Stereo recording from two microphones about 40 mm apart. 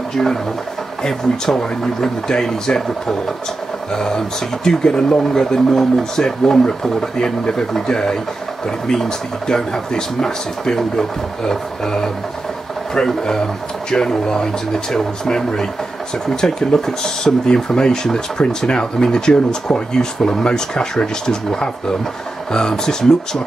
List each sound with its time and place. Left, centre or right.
0.1 s speech: centre